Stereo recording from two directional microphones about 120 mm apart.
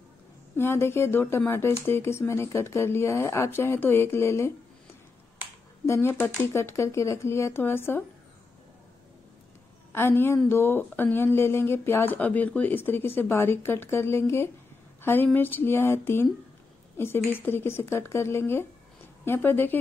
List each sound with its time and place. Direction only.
0.6 s speech: 20° left (ahead or behind)
5.9 s speech: 20° left (ahead or behind)
9.9 s a woman's voice: 20° left (ahead or behind)